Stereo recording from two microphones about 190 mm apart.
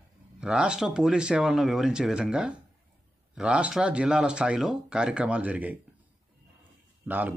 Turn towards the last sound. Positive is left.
turn(degrees=-10)  # may be behind; listen again after turning